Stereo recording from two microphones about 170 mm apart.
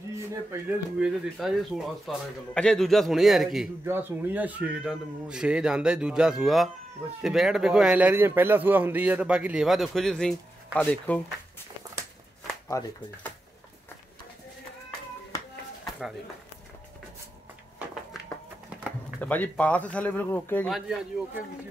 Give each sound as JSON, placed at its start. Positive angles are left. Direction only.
{"t": 0.1, "sound": "a sound", "side_deg": -15}
{"t": 0.9, "sound": "speech", "side_deg": -5}
{"t": 3.8, "sound": "speech", "side_deg": -15}
{"t": 12.6, "sound": "speech", "side_deg": 15}
{"t": 19.1, "sound": "speech", "side_deg": 10}
{"t": 20.6, "sound": "speech", "side_deg": 0}